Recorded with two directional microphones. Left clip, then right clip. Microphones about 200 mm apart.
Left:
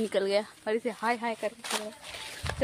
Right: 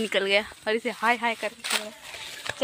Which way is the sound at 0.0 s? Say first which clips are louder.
Right 4 dB; 10° right (ahead or behind).